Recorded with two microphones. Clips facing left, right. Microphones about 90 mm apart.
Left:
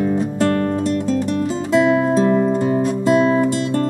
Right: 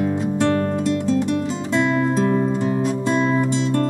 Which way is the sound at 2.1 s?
35° left (ahead or behind).